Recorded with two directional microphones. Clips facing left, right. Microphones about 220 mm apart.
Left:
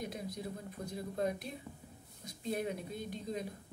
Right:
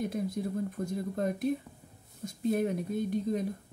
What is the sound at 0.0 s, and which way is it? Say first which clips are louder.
Speech: right 9 dB; 50° right (ahead or behind).